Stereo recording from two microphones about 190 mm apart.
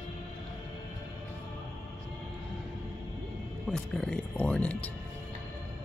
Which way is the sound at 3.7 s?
5° left (ahead or behind).